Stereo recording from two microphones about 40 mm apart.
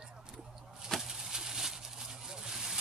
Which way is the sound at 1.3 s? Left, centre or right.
Centre.